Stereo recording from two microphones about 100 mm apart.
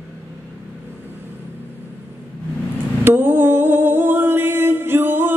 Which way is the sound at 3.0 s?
20° right (ahead or behind).